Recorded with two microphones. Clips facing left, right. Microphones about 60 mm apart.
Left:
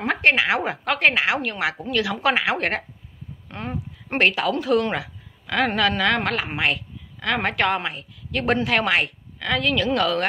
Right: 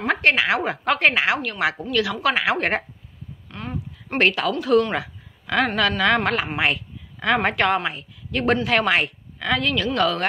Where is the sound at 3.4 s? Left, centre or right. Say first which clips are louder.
Left 1 dB; left.